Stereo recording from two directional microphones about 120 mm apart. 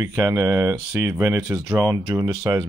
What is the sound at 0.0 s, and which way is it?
Speech, 30° right (ahead or behind).